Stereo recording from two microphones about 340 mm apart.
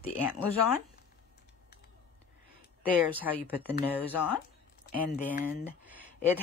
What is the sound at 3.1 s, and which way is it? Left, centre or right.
Speech, centre.